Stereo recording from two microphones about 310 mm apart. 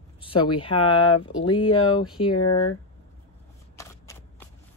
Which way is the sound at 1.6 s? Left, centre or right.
Left.